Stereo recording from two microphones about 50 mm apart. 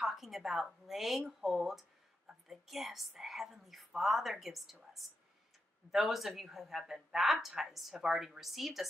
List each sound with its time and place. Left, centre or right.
0.0 s speech: centre